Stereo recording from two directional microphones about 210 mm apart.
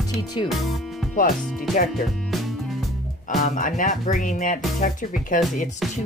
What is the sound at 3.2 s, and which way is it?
Speech, 40° left (ahead or behind).